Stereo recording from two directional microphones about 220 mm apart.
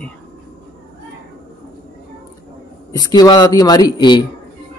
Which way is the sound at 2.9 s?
20° left (ahead or behind).